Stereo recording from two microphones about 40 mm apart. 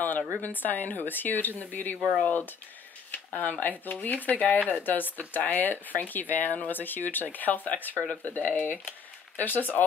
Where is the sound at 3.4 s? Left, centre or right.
Left.